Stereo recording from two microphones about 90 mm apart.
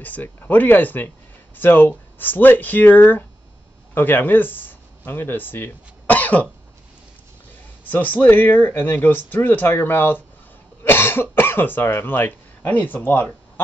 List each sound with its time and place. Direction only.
0.0 s speech: 20° left (ahead or behind)
7.8 s speech: 20° left (ahead or behind)